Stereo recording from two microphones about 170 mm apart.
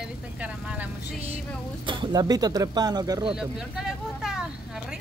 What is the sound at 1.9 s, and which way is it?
Speech, 25° right (ahead or behind).